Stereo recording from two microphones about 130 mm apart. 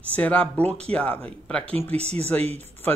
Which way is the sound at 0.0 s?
10° left (ahead or behind).